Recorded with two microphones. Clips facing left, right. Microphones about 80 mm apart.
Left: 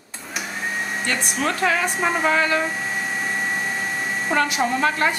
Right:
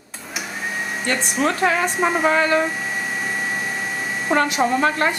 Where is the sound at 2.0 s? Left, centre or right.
Centre.